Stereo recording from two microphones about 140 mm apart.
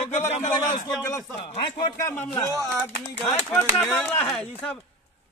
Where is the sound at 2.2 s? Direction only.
20° left (ahead or behind).